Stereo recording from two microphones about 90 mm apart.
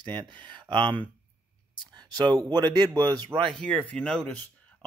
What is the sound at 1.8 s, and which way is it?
Speech, 55° right (ahead or behind).